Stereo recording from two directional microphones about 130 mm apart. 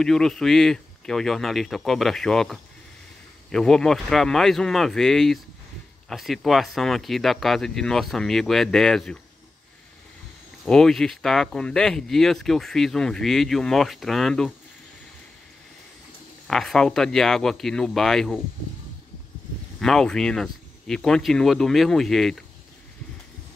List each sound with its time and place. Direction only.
0.0 s speech: 5° left (ahead or behind)
10.6 s speech: 5° left (ahead or behind)
16.4 s speech: 5° left (ahead or behind)
19.8 s speech: 5° left (ahead or behind)